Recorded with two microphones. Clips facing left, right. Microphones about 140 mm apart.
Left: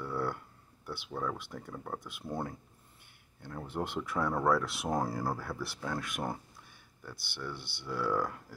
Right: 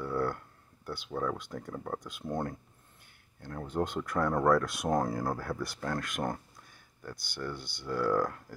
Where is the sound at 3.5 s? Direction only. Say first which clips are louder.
Right 3 dB; 5° left (ahead or behind).